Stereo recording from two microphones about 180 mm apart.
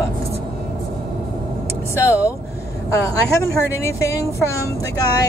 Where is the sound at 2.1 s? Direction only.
10° right (ahead or behind).